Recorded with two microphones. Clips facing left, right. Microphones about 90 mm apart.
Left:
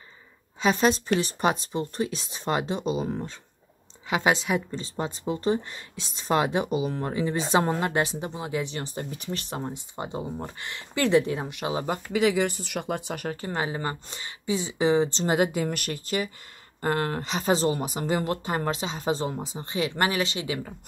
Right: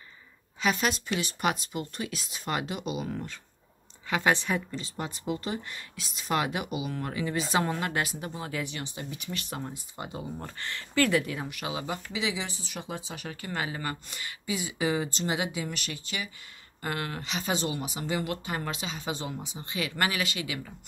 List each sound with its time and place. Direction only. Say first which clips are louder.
0.6 s a woman's voice: left 6 dB; 30° left (ahead or behind)
4.6 s speech: left 5 dB; 30° left (ahead or behind)
8.6 s speech: left 4 dB; 40° left (ahead or behind)
11.8 s speech: left 11 dB; 50° left (ahead or behind)
13.4 s speech: left 1 dB; 30° left (ahead or behind)
15.2 s speech: left 7 dB; 50° left (ahead or behind)